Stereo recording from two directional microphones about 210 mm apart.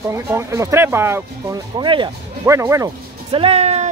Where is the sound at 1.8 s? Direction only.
20° right (ahead or behind).